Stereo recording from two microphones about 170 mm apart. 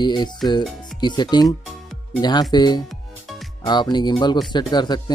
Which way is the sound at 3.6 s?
25° left (ahead or behind).